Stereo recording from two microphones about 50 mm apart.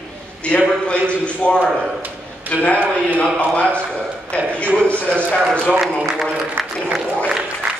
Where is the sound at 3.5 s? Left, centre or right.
Left.